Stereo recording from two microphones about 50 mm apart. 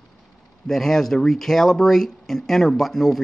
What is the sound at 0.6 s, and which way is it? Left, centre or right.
Speech, centre.